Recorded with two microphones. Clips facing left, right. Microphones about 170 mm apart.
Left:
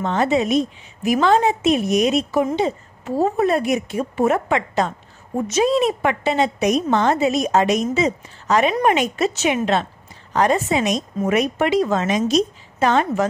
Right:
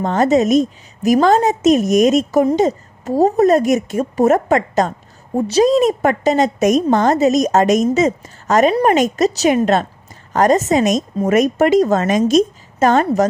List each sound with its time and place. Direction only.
0.0 s a woman's voice: 40° right (ahead or behind)